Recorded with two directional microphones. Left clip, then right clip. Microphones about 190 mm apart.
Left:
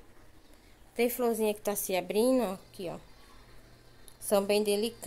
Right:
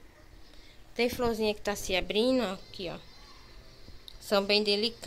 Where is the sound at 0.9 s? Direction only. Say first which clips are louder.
Even; 15° left (ahead or behind).